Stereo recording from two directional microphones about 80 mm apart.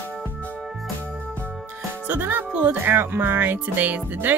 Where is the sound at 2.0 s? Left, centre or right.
Right.